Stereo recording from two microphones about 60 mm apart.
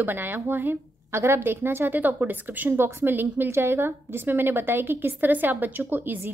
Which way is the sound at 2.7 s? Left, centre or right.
Right.